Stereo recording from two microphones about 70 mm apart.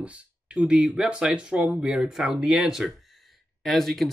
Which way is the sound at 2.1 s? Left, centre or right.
Centre.